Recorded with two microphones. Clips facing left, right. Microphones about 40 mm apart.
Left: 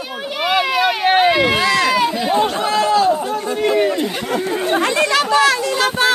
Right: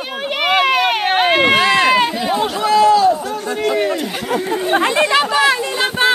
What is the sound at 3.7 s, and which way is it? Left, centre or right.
Chatter, centre.